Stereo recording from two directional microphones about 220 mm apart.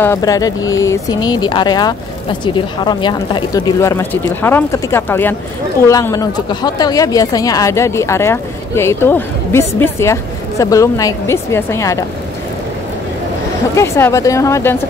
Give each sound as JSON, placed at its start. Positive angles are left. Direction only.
{"t": 0.0, "sound": "speech", "side_deg": 15}
{"t": 13.7, "sound": "speech", "side_deg": 15}